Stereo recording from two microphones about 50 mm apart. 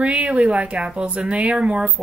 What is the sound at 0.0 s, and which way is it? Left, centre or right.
Speech, right.